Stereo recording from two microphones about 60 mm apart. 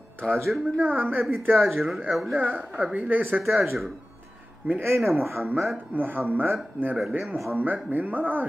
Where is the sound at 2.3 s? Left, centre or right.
Right.